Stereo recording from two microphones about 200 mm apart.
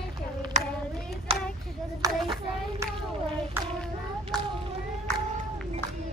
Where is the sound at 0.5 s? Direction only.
35° right (ahead or behind).